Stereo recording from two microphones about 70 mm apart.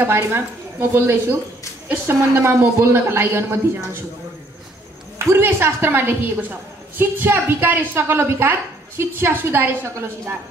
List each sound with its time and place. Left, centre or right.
0.3 s a woman's voice: right
5.2 s a woman's voice: right